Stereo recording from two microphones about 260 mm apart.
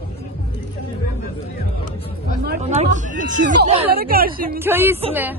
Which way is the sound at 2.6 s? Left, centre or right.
Right.